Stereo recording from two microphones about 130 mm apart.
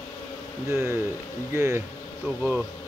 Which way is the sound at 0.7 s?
20° right (ahead or behind).